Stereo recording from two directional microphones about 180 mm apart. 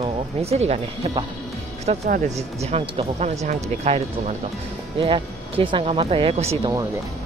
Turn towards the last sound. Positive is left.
turn(degrees=-35)  # may be behind; listen again after turning